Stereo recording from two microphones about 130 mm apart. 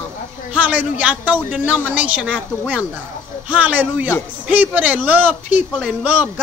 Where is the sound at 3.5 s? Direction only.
10° right (ahead or behind).